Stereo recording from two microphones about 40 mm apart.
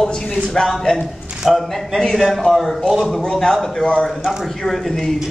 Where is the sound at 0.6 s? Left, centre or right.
Centre.